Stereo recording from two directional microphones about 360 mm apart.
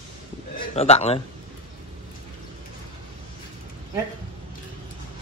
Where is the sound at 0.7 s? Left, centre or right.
Centre.